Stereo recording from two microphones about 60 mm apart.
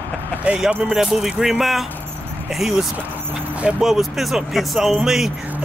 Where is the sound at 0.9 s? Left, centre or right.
Centre.